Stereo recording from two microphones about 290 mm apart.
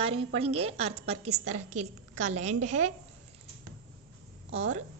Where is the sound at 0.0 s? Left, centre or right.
Centre.